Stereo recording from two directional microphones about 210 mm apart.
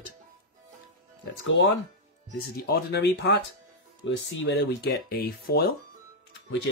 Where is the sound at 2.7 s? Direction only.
50° left (ahead or behind).